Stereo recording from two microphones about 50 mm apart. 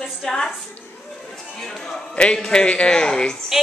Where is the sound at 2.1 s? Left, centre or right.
Centre.